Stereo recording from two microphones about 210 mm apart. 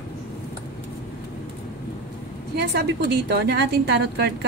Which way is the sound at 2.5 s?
50° right (ahead or behind).